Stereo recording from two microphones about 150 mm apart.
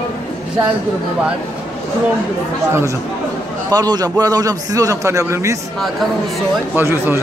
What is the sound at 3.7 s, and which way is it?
A man's voice, 25° right (ahead or behind).